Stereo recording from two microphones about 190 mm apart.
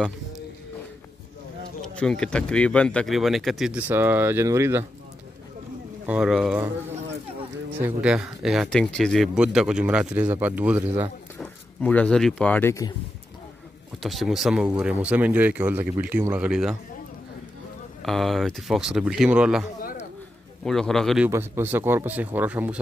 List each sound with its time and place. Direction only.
2.0 s speech: 5° left (ahead or behind); by 4.8 s 15° right (ahead or behind)
6.0 s speech: 5° right (ahead or behind)
7.8 s speech: 5° right (ahead or behind)
11.3 s speech: 5° left (ahead or behind)
14.0 s speech: centre (ahead or behind)
18.0 s speech: centre (ahead or behind)
19.8 s a sound: 50° left (ahead or behind)
20.6 s speech: 5° left (ahead or behind)
21.3 s speech: 15° right (ahead or behind)